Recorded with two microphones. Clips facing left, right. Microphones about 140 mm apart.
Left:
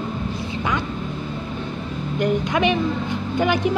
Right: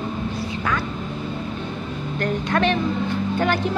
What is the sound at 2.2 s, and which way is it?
A woman's voice, 15° left (ahead or behind).